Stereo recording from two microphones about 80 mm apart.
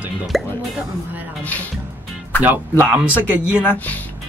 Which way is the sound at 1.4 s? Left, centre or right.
Centre.